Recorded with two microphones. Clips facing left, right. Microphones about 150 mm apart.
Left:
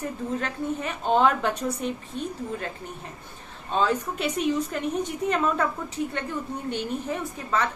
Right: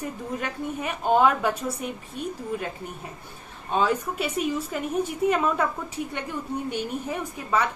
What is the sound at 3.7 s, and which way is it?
A woman's voice, 10° right (ahead or behind).